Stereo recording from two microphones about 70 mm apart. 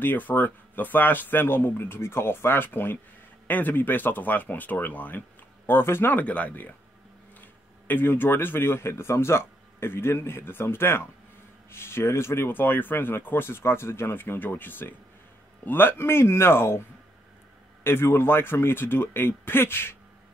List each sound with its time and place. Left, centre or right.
0.0 s speech: left
6.2 s speech: left
7.9 s speech: left
17.8 s speech: left